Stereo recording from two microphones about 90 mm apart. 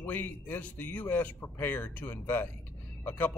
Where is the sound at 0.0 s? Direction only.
20° left (ahead or behind).